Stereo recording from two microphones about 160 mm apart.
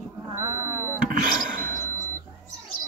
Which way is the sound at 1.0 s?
55° right (ahead or behind).